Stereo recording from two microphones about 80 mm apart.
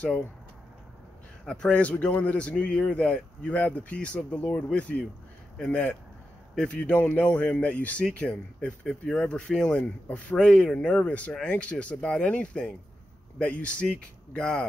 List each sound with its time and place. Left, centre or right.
1.4 s speech: centre